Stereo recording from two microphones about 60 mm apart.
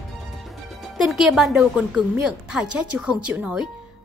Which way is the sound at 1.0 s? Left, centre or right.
Centre.